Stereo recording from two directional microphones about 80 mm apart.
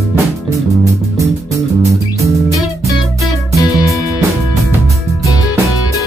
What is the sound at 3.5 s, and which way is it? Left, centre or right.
Music, left.